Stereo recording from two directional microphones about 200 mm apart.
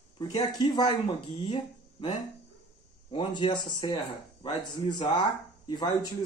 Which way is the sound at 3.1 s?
25° left (ahead or behind).